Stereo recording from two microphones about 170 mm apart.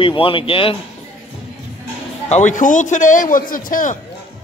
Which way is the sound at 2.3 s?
45° left (ahead or behind).